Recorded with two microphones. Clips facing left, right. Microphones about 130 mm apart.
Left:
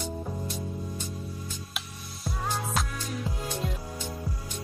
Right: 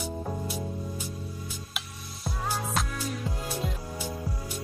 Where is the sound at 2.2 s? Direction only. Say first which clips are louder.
Even; 5° right (ahead or behind).